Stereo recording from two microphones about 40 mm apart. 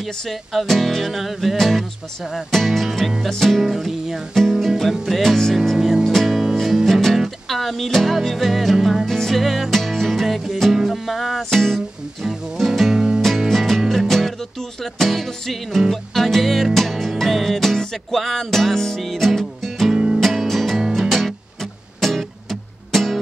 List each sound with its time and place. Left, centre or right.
0.0 s speech: centre
4.4 s music: centre
5.8 s music: centre
6.0 s music: centre
9.0 s music: centre
11.5 s music: centre
12.2 s music: centre
12.9 s music: centre
13.5 s music: centre
19.9 s music: centre
20.2 s music: centre